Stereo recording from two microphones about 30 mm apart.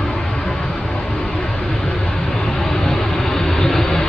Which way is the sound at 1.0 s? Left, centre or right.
Centre.